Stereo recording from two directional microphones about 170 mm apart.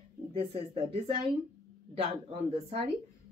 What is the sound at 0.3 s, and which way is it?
Speech, 35° right (ahead or behind).